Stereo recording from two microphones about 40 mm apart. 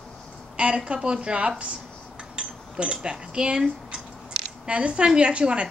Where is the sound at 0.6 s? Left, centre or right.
Right.